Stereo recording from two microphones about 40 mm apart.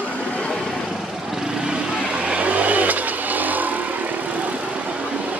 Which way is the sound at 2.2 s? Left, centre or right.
Right.